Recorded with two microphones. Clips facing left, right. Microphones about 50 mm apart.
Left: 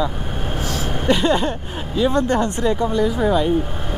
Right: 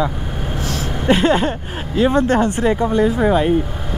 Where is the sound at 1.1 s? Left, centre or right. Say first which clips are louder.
Right 3 dB; right.